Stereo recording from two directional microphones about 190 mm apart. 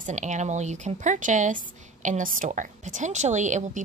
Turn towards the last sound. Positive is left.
turn(degrees=-40)  # may be behind; listen again after turning